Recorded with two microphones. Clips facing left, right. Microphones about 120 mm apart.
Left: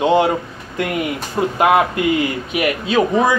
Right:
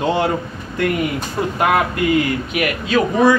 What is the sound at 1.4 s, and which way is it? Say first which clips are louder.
Speech: left 3 dB; 25° left (ahead or behind).